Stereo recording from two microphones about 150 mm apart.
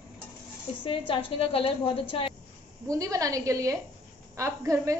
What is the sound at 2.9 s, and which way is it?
A woman's voice, 20° right (ahead or behind).